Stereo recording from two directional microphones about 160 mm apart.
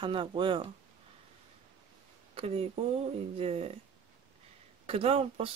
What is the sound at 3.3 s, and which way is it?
Speech, 40° right (ahead or behind).